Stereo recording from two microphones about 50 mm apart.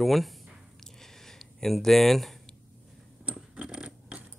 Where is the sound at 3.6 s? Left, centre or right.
Centre.